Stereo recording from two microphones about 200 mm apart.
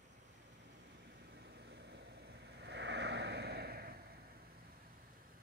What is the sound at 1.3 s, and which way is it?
Vehicle, 55° right (ahead or behind).